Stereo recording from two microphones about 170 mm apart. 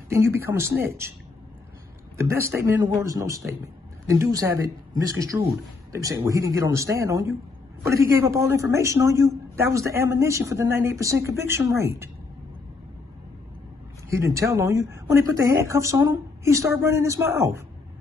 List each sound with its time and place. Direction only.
0.1 s speech: 15° right (ahead or behind)
2.8 s speech: 20° right (ahead or behind)
14.1 s speech: 20° right (ahead or behind)